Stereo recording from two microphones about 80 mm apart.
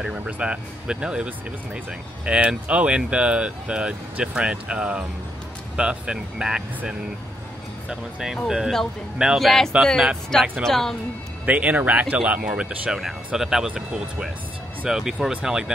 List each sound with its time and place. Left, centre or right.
0.0 s speech: centre
11.4 s speech: centre